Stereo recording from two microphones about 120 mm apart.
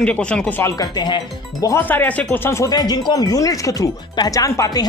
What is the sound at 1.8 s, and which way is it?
Speech, 15° left (ahead or behind).